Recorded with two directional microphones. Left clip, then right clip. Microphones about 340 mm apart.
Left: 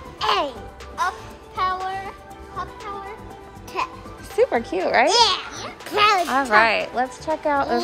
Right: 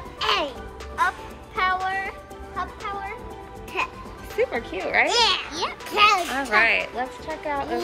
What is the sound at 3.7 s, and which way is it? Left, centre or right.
Music, left.